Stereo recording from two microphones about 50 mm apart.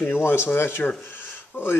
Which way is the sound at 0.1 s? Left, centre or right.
Left.